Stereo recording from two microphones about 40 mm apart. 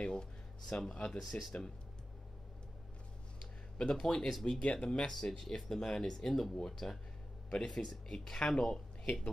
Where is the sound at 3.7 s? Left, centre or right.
Left.